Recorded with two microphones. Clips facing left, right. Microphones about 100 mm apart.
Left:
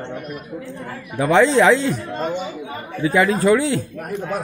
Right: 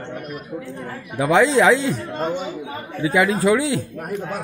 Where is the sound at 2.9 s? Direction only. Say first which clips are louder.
Left 1 dB; 10° right (ahead or behind).